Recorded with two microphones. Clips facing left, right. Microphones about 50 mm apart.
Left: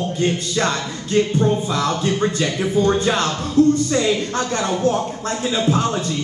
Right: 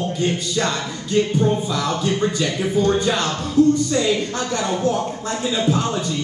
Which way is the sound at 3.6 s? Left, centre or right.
Left.